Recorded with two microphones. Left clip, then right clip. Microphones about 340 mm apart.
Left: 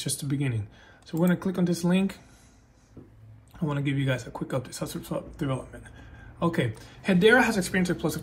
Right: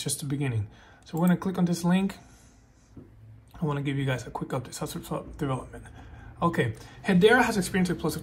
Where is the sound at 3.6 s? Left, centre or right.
Centre.